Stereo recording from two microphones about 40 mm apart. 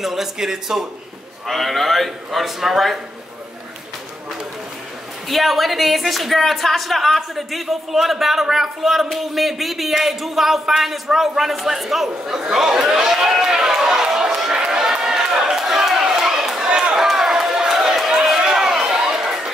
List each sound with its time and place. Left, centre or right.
0.0 s a man's voice: centre
1.5 s speech: centre
5.3 s a man's voice: centre
13.7 s run: centre
15.5 s chatter: centre
16.6 s run: right
16.9 s run: centre